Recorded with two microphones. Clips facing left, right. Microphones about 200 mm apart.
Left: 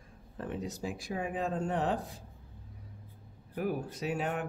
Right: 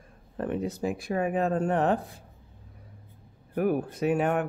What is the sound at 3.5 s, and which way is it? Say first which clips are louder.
Speech: right 8 dB; 55° right (ahead or behind).